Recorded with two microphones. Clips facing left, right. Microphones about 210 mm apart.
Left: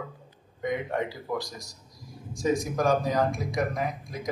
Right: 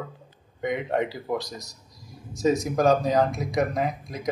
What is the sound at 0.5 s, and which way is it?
Speech, 25° right (ahead or behind).